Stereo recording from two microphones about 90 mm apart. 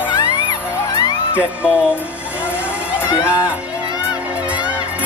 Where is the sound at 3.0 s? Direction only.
15° right (ahead or behind).